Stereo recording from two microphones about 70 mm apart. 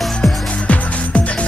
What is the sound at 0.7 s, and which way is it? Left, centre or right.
Music, centre.